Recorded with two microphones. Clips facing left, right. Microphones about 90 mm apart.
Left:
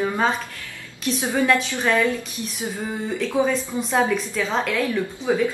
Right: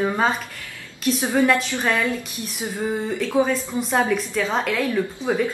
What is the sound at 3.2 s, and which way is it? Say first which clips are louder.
A woman's voice: even; centre (ahead or behind).